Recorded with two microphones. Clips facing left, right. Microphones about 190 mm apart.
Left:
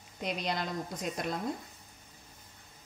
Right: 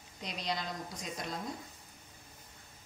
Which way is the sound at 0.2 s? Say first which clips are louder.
Left 4 dB; 60° left (ahead or behind).